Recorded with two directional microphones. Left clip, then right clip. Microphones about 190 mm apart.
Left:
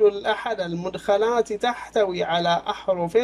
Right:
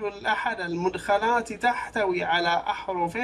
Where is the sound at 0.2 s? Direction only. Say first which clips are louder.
Left 2 dB; 35° left (ahead or behind).